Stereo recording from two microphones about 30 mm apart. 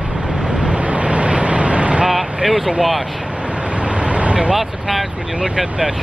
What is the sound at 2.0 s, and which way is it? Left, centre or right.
Vehicle, centre.